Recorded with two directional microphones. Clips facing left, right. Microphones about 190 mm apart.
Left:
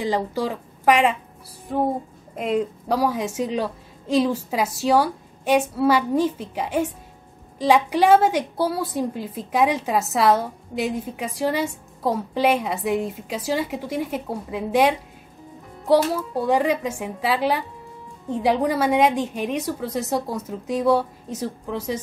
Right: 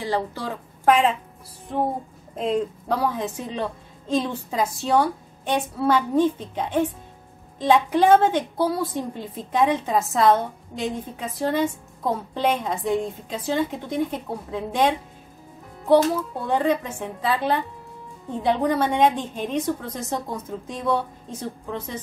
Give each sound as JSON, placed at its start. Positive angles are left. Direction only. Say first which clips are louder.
{"t": 0.0, "sound": "a woman's voice", "louder": "left 2 dB", "side_deg": 15}
{"t": 2.3, "sound": "a woman's voice", "louder": "left 1 dB", "side_deg": 10}